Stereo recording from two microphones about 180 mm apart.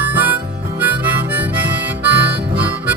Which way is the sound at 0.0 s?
10° right (ahead or behind).